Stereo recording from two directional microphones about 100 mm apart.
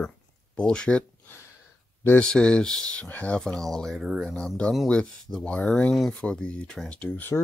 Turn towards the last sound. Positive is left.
turn(degrees=15)  # may be behind; listen again after turning